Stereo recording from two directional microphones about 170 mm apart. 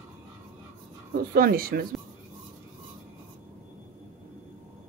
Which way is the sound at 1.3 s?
60° right (ahead or behind).